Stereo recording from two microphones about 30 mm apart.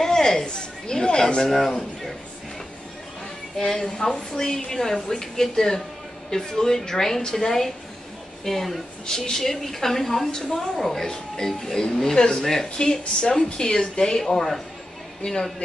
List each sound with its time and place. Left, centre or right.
0.0 s a sound: centre
0.5 s a woman's voice: left
1.5 s speech: centre
3.5 s a woman's voice: centre
9.0 s a woman's voice: centre
14.2 s a woman's voice: centre
15.2 s speech: left